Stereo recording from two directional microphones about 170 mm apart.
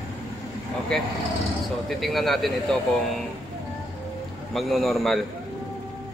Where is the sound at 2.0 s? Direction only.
Centre (ahead or behind).